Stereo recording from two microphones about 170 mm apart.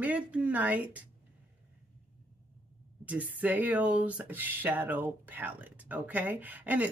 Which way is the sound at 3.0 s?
10° right (ahead or behind).